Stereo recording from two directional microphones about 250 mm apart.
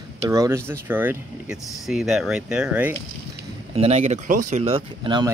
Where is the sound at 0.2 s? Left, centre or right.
Centre.